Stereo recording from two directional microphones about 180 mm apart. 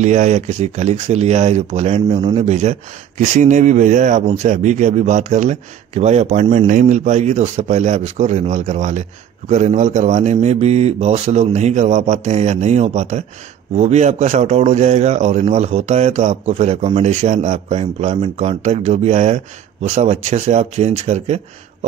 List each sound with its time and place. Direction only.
0.0 s speech: 40° right (ahead or behind)